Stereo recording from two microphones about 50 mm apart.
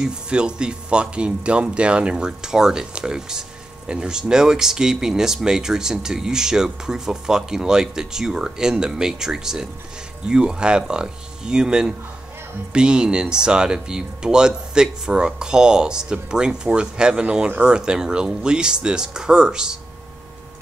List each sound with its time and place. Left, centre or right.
0.0 s speech: centre